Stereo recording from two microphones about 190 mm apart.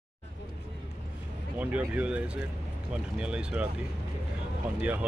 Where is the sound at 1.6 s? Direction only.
5° right (ahead or behind).